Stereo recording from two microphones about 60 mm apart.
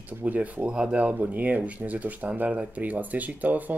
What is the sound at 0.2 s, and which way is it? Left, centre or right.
Speech, right.